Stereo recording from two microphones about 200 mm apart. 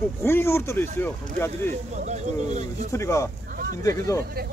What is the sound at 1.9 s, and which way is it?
Speech, 35° right (ahead or behind).